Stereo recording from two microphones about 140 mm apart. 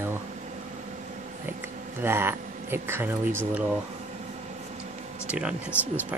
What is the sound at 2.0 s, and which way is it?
Speech, 15° right (ahead or behind).